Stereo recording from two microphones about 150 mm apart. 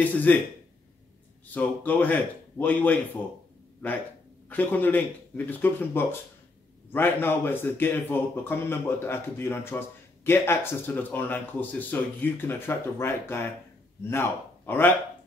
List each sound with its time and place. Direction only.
0.0 s a man's voice: 10° left (ahead or behind)
1.5 s a man's voice: 10° left (ahead or behind)
4.5 s a man's voice: 10° left (ahead or behind)